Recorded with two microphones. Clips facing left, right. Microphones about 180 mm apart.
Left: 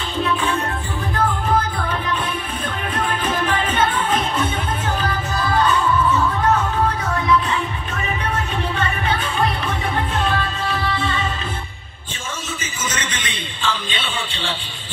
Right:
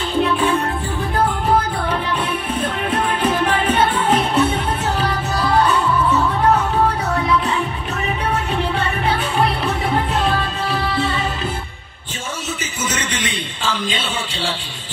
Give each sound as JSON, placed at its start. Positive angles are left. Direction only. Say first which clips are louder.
{"t": 3.9, "sound": "music", "louder": "right 4 dB", "side_deg": -75}